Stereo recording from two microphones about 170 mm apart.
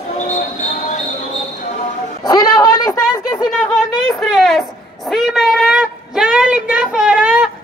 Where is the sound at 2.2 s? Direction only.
25° left (ahead or behind).